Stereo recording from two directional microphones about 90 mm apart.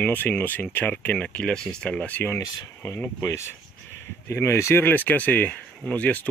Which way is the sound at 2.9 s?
35° left (ahead or behind).